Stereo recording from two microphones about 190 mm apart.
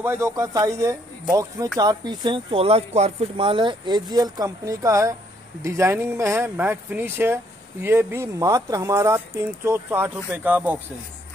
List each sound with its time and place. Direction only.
0.0 s speech: 15° right (ahead or behind)